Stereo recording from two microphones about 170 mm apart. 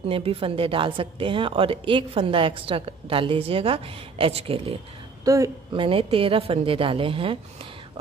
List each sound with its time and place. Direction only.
0.0 s a woman's voice: 35° right (ahead or behind)
5.2 s a woman's voice: 20° right (ahead or behind)
5.9 s a woman's voice: 30° right (ahead or behind)